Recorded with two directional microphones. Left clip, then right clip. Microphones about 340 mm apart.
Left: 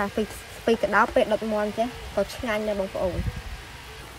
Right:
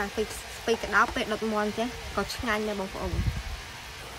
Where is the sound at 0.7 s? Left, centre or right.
Centre.